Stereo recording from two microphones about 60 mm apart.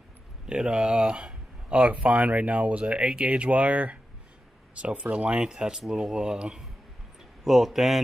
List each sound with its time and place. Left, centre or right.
0.5 s speech: centre